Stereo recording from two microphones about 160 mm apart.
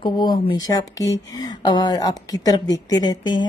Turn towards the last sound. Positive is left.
turn(degrees=25)  # may be behind; listen again after turning